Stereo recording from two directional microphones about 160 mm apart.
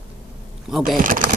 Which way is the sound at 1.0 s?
60° right (ahead or behind).